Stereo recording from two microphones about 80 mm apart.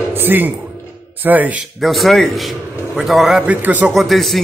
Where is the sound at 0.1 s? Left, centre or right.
Right.